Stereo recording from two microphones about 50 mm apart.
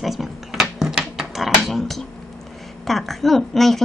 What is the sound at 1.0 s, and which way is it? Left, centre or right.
Dog, centre.